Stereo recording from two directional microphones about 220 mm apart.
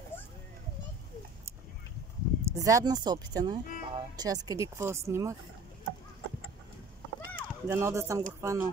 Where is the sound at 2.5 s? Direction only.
15° right (ahead or behind).